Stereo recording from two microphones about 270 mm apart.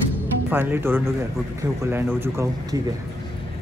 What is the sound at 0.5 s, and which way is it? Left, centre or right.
Speech, centre.